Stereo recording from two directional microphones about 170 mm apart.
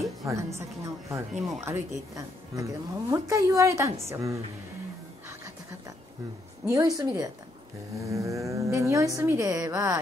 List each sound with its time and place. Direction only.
0.2 s a woman's voice: 15° right (ahead or behind)
6.6 s a woman's voice: 20° right (ahead or behind)